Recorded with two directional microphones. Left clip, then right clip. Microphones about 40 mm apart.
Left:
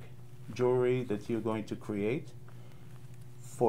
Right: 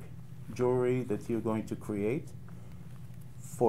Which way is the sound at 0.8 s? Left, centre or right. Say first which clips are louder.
Even; right.